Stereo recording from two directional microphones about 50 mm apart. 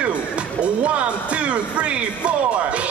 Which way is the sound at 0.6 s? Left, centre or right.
Right.